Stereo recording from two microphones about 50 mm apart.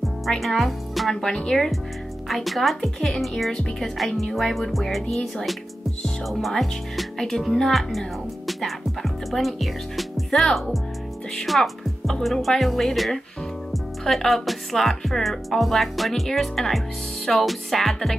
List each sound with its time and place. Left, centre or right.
0.4 s speech: centre
1.2 s speech: centre
2.2 s speech: centre